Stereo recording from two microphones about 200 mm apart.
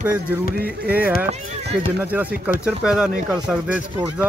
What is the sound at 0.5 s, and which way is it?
Speech, 50° right (ahead or behind).